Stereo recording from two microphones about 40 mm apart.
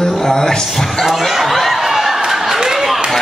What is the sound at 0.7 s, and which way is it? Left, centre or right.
Speech, centre.